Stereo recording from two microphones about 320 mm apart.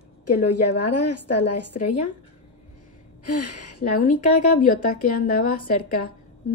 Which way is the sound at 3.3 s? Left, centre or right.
Left.